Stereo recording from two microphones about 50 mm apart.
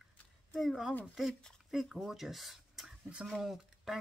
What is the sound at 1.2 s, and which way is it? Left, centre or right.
Speech, centre.